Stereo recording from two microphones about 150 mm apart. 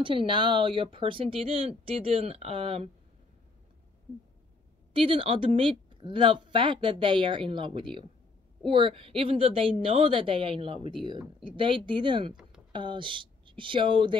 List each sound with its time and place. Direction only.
0.0 s speech: 35° right (ahead or behind)
4.9 s speech: 35° right (ahead or behind)